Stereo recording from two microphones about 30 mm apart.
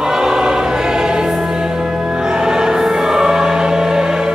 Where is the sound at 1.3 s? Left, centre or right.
Centre.